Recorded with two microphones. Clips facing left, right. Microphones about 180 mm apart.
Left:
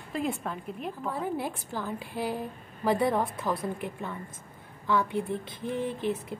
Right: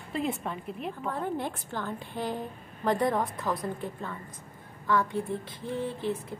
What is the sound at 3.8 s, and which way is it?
A woman's voice, 15° left (ahead or behind).